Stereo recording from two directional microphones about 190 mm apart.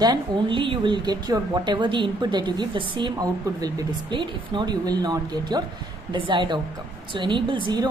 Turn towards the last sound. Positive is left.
turn(degrees=-25)  # may be behind; listen again after turning